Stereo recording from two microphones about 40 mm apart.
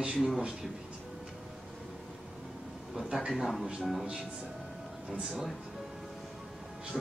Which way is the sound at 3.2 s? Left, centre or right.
Centre.